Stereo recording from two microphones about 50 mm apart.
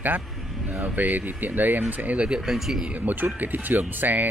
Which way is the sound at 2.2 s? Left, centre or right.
Centre.